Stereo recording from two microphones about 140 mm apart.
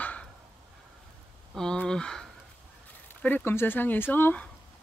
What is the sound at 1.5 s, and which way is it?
Speech, 5° left (ahead or behind).